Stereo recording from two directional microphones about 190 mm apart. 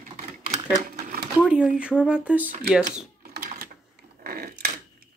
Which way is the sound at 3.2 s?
50° right (ahead or behind).